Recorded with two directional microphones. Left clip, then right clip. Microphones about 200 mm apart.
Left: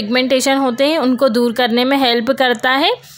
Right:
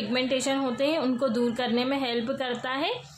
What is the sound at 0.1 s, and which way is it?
A woman's voice, 45° left (ahead or behind).